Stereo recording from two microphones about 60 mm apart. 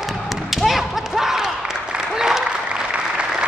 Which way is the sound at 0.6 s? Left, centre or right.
Centre.